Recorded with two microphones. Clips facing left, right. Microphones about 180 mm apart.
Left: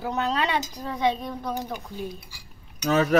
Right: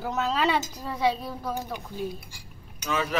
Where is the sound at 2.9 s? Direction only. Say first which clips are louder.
Left 8 dB; 45° left (ahead or behind).